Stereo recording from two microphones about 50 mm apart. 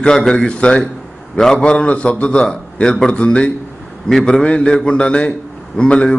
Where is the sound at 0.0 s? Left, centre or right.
Centre.